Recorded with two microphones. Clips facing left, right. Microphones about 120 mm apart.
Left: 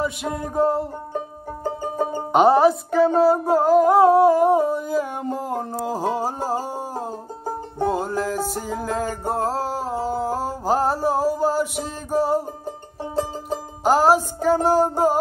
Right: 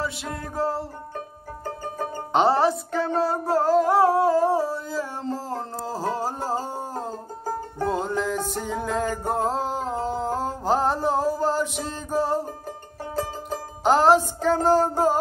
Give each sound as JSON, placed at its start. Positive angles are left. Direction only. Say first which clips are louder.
{"t": 0.0, "sound": "music", "louder": "left 5 dB", "side_deg": 20}
{"t": 12.6, "sound": "music", "louder": "left 4 dB", "side_deg": 25}
{"t": 13.8, "sound": "music", "louder": "left 1 dB", "side_deg": 5}